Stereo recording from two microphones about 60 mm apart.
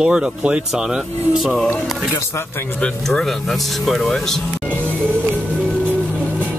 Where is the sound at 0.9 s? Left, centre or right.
Centre.